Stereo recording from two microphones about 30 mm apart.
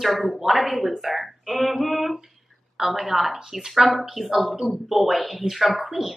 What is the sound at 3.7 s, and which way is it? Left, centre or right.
Speech, centre.